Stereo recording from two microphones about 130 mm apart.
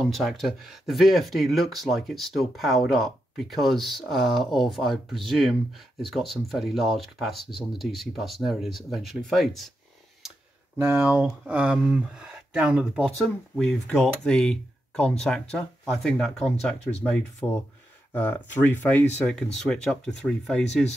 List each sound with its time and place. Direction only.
0.0 s speech: centre (ahead or behind)
10.8 s speech: 15° right (ahead or behind)
13.2 s speech: 5° left (ahead or behind)
18.1 s speech: 15° left (ahead or behind)